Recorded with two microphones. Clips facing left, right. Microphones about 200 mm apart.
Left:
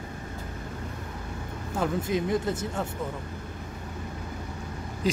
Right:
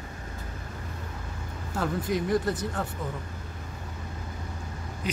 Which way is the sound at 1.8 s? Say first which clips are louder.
Left 1 dB; 20° left (ahead or behind).